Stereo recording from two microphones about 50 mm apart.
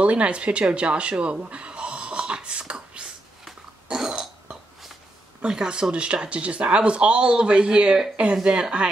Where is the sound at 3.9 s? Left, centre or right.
Centre.